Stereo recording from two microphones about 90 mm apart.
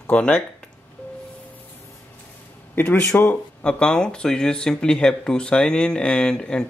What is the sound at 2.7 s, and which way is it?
Speech, 25° left (ahead or behind).